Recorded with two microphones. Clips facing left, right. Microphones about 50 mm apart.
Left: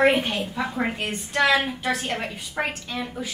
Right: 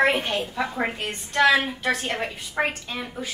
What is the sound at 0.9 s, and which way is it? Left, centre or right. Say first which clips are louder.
A woman's voice: right 1 dB; centre.